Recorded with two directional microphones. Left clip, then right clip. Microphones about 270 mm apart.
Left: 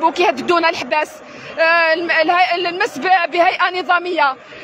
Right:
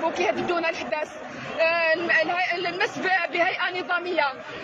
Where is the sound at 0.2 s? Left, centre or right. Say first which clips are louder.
Left 9 dB; left.